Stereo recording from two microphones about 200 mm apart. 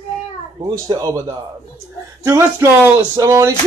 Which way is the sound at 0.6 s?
20° right (ahead or behind).